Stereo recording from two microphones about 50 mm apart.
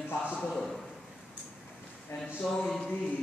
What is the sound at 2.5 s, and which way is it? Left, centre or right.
Speech, centre.